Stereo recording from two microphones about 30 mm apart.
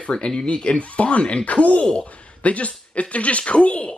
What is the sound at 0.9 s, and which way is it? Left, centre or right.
Speech, left.